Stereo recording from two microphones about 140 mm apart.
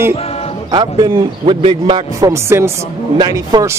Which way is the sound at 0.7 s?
30° right (ahead or behind).